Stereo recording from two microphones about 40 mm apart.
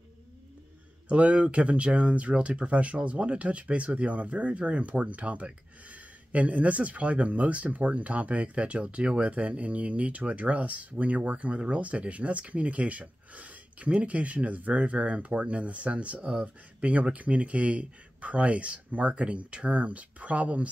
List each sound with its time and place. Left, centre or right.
1.0 s speech: right